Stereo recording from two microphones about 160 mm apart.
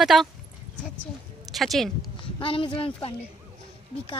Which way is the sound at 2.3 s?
35° left (ahead or behind).